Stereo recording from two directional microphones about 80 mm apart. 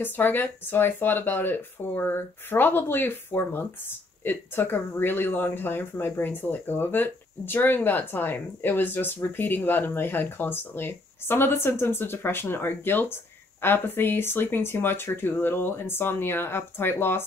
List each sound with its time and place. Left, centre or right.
0.0 s speech: left